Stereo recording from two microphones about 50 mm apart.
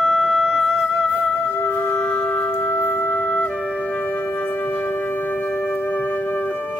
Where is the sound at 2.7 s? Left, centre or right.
Left.